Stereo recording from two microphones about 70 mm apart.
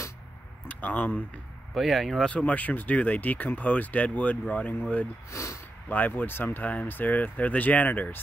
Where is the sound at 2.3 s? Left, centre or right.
Left.